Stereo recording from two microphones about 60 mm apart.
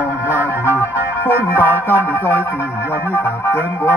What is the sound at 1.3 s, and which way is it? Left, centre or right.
Music, right.